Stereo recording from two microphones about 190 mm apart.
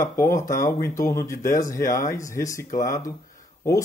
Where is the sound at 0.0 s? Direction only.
15° left (ahead or behind).